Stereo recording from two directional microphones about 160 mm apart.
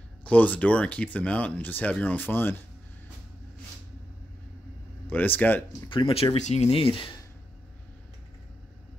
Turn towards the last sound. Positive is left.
turn(degrees=35)  # may be behind; listen again after turning